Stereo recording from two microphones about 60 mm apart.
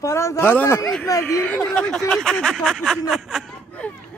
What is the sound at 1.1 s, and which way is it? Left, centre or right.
Speech, left.